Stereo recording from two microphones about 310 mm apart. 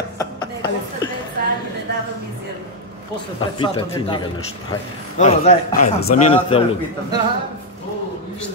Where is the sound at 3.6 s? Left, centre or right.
Centre.